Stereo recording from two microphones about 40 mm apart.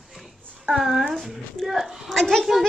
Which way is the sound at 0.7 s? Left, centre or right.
Centre.